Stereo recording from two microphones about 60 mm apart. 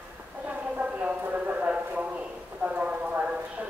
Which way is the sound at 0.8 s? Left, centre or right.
Right.